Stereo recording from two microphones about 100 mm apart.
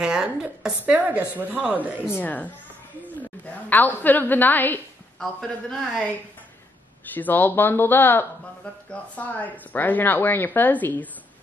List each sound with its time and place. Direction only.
0.0 s a woman's voice: 5° right (ahead or behind)
2.0 s a woman's voice: 20° left (ahead or behind)
5.2 s speech: centre (ahead or behind)
7.2 s a woman's voice: 20° left (ahead or behind)